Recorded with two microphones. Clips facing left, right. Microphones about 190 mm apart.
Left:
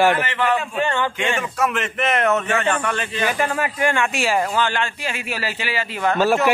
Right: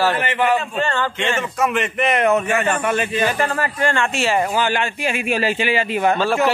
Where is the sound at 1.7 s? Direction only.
5° right (ahead or behind).